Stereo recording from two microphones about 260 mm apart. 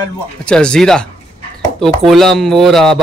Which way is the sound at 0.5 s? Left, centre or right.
Centre.